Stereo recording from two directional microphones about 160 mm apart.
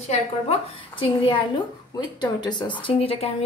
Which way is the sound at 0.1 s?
35° left (ahead or behind).